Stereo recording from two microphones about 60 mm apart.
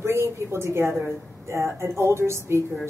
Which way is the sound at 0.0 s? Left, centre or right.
Right.